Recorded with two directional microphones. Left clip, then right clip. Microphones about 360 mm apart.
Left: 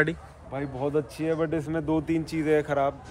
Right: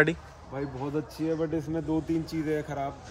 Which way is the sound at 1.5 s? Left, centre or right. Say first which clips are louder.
Left 3 dB; centre.